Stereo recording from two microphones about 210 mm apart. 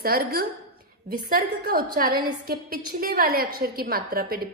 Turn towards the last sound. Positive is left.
turn(degrees=-45)  # may be behind; listen again after turning